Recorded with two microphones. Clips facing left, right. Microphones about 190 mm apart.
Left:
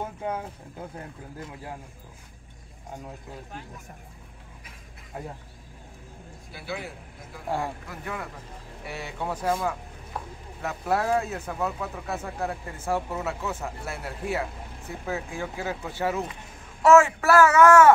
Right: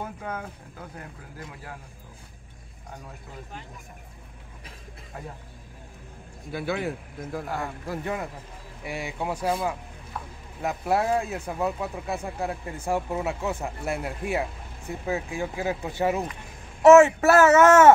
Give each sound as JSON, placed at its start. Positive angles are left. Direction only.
{"t": 0.0, "sound": "a sound", "side_deg": 25}
{"t": 5.1, "sound": "speech", "side_deg": 20}
{"t": 6.5, "sound": "speech", "side_deg": -55}
{"t": 7.4, "sound": "speech", "side_deg": 30}
{"t": 7.9, "sound": "speech", "side_deg": -25}
{"t": 8.8, "sound": "speech", "side_deg": -15}